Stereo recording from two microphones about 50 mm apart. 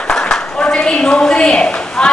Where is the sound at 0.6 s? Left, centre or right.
Left.